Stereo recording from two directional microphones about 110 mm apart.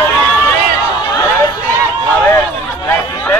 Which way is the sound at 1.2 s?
30° left (ahead or behind).